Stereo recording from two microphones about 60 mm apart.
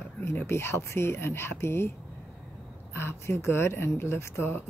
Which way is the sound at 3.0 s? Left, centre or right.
Left.